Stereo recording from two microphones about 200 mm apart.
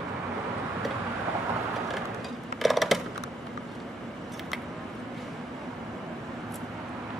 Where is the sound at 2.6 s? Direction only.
Centre (ahead or behind).